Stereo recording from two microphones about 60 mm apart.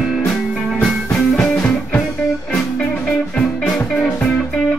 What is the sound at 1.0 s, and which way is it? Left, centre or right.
Music, centre.